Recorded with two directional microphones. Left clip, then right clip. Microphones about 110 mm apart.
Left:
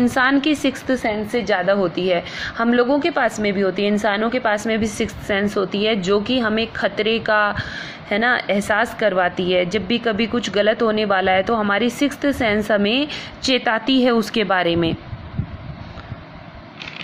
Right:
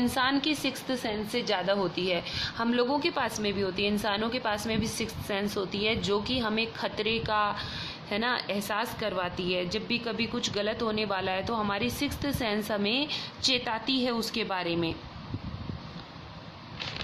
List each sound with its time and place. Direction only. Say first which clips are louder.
0.1 s a woman's voice: left 10 dB; 40° left (ahead or behind)